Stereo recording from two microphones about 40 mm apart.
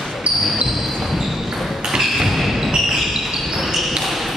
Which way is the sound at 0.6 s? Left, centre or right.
Centre.